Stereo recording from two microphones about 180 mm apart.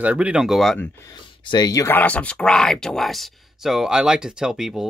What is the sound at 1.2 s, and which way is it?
Speech, 25° left (ahead or behind).